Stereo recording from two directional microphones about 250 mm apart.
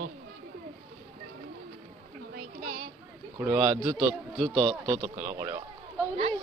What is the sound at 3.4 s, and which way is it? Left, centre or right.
A man's voice, centre.